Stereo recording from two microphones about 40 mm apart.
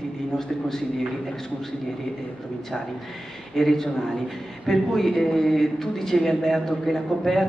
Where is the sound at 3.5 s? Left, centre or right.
Centre.